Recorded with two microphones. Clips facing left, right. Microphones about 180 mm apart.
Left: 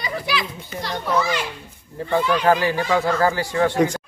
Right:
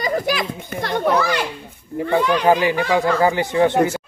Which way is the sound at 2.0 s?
15° right (ahead or behind).